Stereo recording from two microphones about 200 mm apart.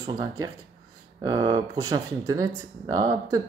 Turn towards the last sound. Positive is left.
turn(degrees=-20)  # may be behind; listen again after turning